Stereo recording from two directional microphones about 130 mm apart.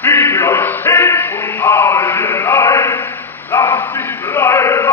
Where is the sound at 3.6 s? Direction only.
20° left (ahead or behind).